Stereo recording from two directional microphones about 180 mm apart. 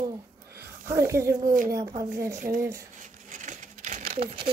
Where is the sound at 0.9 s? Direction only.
15° right (ahead or behind).